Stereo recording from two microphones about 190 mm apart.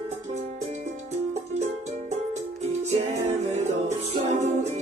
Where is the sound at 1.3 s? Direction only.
35° right (ahead or behind).